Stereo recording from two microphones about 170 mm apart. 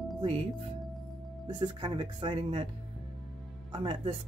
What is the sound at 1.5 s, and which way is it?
Speech, 25° right (ahead or behind).